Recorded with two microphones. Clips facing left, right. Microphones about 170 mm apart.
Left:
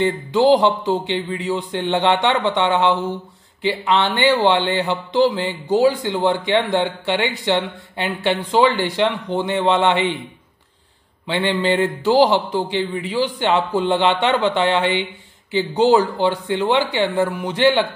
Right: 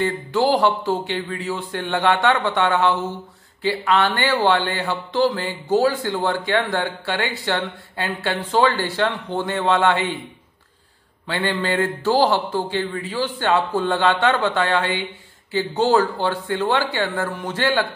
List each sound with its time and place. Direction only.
0.0 s speech: 20° left (ahead or behind)
11.2 s speech: 20° left (ahead or behind)